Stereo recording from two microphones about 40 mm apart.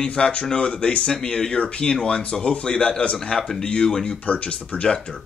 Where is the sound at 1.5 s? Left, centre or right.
Left.